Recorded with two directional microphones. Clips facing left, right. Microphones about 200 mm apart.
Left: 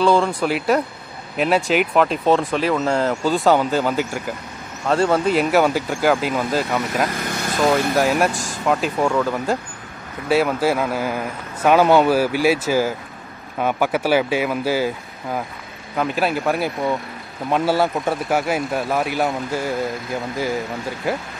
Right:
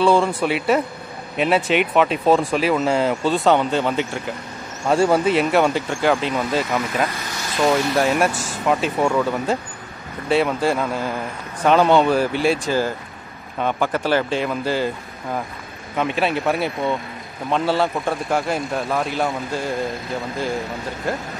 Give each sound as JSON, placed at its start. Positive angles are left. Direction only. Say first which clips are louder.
{"t": 0.0, "sound": "speech", "louder": "even", "side_deg": -5}
{"t": 4.8, "sound": "speech", "louder": "right 1 dB", "side_deg": -10}
{"t": 7.1, "sound": "vehicle", "louder": "left 5 dB", "side_deg": 55}
{"t": 7.6, "sound": "speech", "louder": "even", "side_deg": 0}
{"t": 21.0, "sound": "speech", "louder": "left 2 dB", "side_deg": 5}